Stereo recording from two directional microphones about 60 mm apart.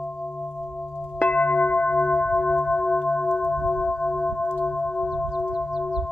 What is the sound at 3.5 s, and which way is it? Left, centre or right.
Singing bowl, centre.